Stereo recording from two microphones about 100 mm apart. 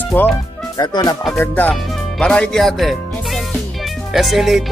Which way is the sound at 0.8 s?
40° left (ahead or behind).